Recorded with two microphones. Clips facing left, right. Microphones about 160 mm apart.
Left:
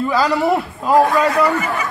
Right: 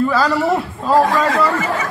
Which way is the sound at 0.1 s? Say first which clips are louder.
Even; 10° left (ahead or behind).